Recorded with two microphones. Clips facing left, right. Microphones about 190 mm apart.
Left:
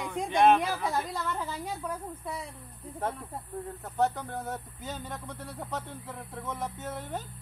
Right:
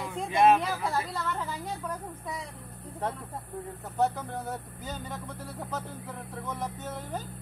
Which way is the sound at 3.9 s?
Centre (ahead or behind).